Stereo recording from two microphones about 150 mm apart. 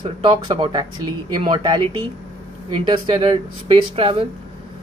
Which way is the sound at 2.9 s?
35° right (ahead or behind).